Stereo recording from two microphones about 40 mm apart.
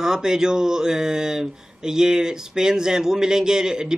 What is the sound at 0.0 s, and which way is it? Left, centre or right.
A man's voice, centre.